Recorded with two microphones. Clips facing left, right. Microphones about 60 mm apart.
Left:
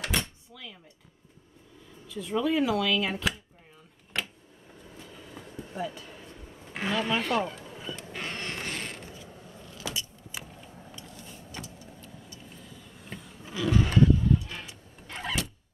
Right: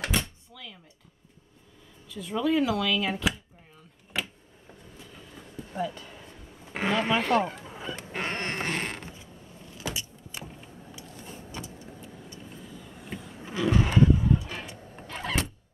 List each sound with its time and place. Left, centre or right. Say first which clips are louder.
0.0 s door: right 1 dB; centre
0.5 s speech: even; centre
2.0 s speech: right 1 dB; centre
4.1 s a sound: right 1 dB; centre
5.3 s a sound: right 1 dB; centre
6.7 s a sound: right 3 dB; right
9.8 s keys jangling: right 1 dB; right
11.1 s vehicle: right 4 dB; right
12.5 s vehicle: right 4 dB; centre
13.4 s roaring cats: right 1 dB; right
15.0 s vehicle: right 1 dB; centre